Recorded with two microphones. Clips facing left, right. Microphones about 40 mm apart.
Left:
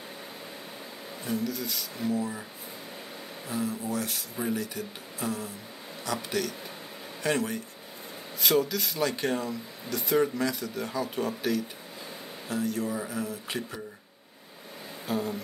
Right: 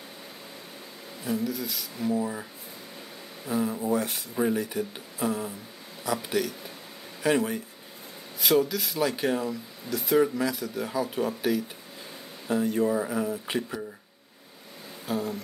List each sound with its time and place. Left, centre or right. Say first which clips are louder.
1.2 s speech: right 2 dB; centre
3.4 s speech: right 4 dB; centre
3.7 s speech: right 5 dB; right
7.2 s speech: right 4 dB; centre
12.4 s speech: right 6 dB; right
15.0 s a sound: right 1 dB; centre